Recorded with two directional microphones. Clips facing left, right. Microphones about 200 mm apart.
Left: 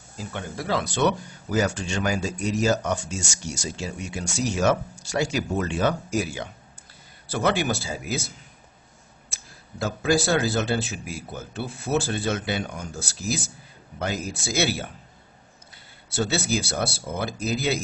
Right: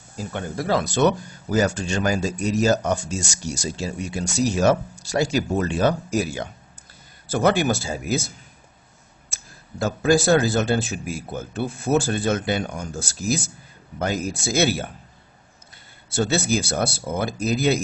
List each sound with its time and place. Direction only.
0.3 s speech: 45° right (ahead or behind)
9.8 s speech: 45° right (ahead or behind)
16.1 s speech: 50° right (ahead or behind)